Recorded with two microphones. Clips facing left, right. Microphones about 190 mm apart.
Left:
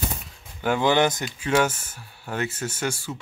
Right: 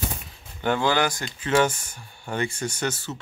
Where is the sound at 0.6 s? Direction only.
15° left (ahead or behind).